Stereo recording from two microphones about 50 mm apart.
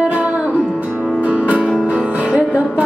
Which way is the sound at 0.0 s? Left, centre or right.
Right.